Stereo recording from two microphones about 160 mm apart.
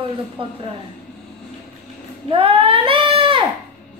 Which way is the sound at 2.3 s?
35° right (ahead or behind).